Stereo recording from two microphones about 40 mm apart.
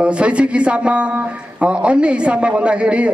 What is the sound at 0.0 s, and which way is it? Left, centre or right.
A woman's voice, right.